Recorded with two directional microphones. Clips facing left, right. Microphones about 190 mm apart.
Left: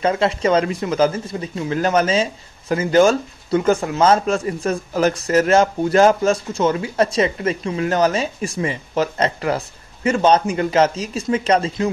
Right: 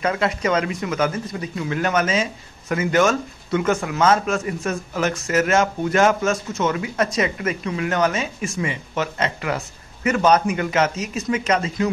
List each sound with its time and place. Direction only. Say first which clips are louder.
0.0 s speech: left 4 dB; 30° left (ahead or behind)